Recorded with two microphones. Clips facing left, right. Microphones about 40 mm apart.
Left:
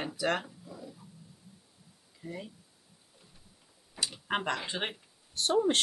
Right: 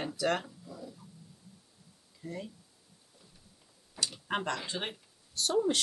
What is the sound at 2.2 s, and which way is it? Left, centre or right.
Speech, centre.